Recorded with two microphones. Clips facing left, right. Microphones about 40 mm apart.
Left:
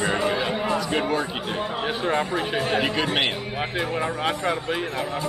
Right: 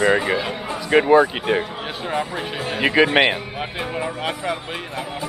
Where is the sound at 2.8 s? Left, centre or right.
Centre.